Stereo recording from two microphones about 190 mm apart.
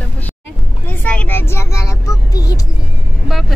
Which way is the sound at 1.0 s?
5° left (ahead or behind).